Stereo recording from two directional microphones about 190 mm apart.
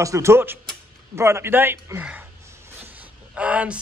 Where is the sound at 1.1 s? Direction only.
15° right (ahead or behind).